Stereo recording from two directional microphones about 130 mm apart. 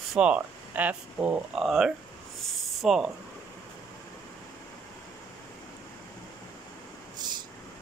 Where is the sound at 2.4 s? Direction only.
Centre (ahead or behind).